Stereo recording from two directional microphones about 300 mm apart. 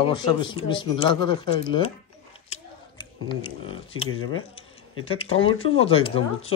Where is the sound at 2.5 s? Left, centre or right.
Centre.